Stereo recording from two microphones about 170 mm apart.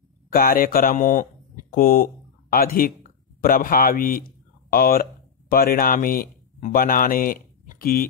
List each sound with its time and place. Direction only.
0.3 s speech: 60° left (ahead or behind)